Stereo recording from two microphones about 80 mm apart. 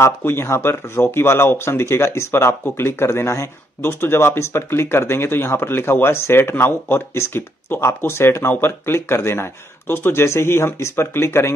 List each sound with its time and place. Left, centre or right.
0.0 s speech: left